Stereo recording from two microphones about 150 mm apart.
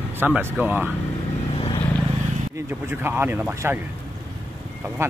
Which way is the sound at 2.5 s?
15° right (ahead or behind).